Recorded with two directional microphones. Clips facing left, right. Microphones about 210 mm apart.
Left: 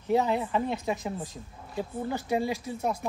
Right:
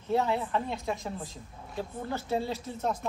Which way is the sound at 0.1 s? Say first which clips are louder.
Left 2 dB; 15° left (ahead or behind).